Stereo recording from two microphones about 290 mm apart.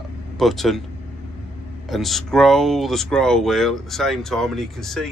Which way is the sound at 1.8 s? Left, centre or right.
Centre.